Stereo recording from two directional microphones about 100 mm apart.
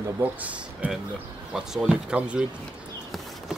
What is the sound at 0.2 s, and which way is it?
Speech, 15° right (ahead or behind).